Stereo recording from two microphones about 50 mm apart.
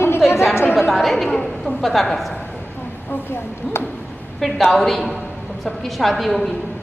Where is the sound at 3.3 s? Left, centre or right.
Left.